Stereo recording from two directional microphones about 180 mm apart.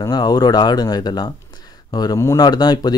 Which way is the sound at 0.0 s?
20° left (ahead or behind).